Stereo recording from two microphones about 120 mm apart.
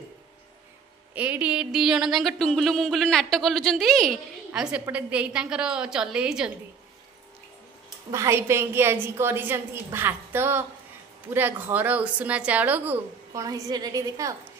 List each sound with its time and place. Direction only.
1.1 s a sound: 10° right (ahead or behind)
4.5 s a woman's voice: 10° right (ahead or behind)
8.1 s a woman's voice: 25° right (ahead or behind)
13.3 s a woman's voice: 30° right (ahead or behind)